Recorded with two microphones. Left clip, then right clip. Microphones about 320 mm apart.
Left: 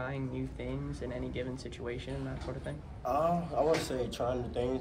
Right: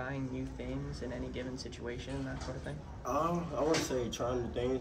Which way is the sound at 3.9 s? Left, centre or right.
Centre.